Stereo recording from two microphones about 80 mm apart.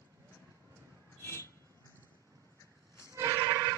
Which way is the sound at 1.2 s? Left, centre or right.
Left.